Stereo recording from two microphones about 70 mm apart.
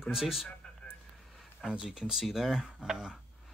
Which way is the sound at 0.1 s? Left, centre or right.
Centre.